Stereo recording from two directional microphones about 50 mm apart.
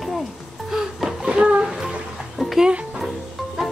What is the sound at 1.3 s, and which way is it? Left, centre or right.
Music, centre.